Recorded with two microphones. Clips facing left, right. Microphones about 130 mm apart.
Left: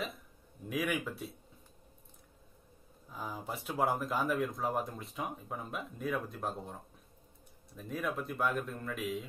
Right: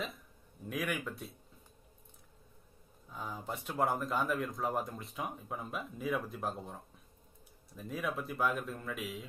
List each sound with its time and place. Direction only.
0.7 s speech: centre (ahead or behind)
3.1 s speech: centre (ahead or behind)